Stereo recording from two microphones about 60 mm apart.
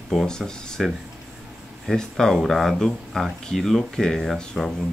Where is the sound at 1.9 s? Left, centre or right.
Centre.